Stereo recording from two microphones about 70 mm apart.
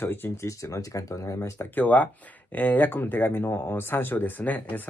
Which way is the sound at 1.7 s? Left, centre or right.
Left.